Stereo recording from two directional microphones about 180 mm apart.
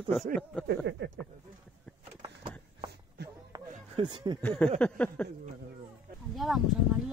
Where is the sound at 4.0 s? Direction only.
25° right (ahead or behind).